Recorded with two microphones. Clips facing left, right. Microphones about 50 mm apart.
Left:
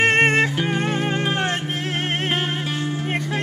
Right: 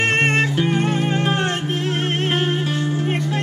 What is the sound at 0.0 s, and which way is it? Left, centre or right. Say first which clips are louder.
Music: left 1 dB; centre.